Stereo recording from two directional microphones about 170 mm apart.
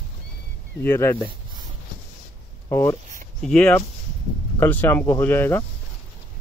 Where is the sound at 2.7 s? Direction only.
15° left (ahead or behind).